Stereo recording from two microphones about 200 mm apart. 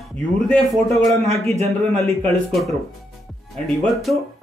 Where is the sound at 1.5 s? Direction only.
30° right (ahead or behind).